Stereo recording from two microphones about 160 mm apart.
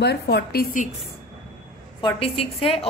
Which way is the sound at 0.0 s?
90° left.